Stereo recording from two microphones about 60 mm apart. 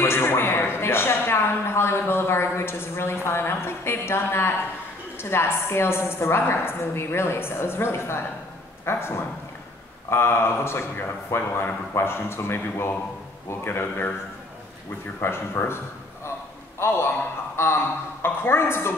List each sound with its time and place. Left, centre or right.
0.0 s a sound: left
5.2 s a woman's voice: left
15.1 s a woman's voice: left
16.8 s a woman's voice: left